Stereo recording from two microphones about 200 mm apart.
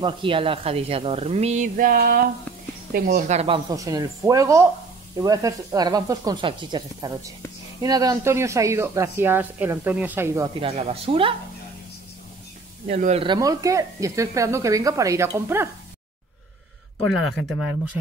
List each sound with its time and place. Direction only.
0.0 s speech: 25° right (ahead or behind)
12.8 s speech: 35° right (ahead or behind); by 15.7 s 10° right (ahead or behind)